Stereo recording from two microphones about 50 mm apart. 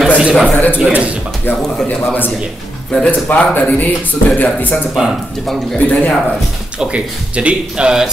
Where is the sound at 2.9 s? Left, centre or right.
Left.